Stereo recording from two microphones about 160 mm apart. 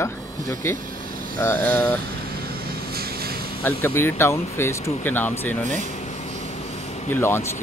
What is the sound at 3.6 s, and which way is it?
Speech, 15° left (ahead or behind).